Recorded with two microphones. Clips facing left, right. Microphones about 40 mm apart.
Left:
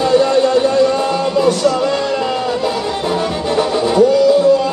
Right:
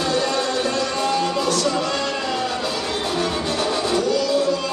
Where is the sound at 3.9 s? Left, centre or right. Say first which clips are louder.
Left 12 dB; centre.